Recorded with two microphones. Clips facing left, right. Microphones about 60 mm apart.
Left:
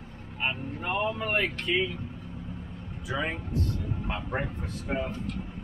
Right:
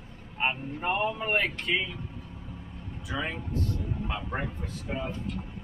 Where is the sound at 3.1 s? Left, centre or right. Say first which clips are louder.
Left 2 dB; centre.